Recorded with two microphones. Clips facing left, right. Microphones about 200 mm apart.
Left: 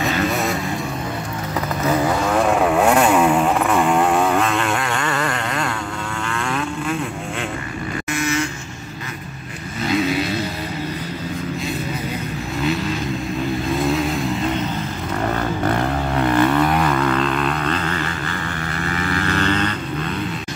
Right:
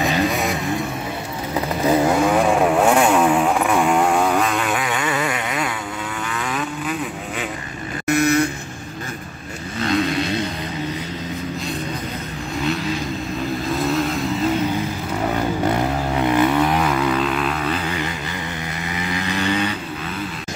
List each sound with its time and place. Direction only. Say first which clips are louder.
0.3 s vehicle: left 1 dB; centre (ahead or behind)
1.5 s vehicle: right 2 dB; 10° right (ahead or behind)
6.2 s livestock: left 2 dB; 5° right (ahead or behind)
8.1 s vehicle: right 6 dB; 60° right (ahead or behind)
9.8 s vehicle: left 1 dB; centre (ahead or behind)
13.7 s vehicle: even; centre (ahead or behind)
15.2 s vehicle: right 1 dB; 15° right (ahead or behind)